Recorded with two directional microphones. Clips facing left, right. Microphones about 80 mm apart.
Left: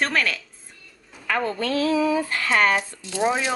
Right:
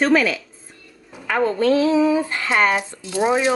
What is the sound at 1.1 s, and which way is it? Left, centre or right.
Speech, right.